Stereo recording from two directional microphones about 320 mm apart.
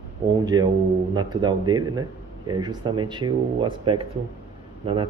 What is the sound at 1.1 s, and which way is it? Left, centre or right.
Speech, centre.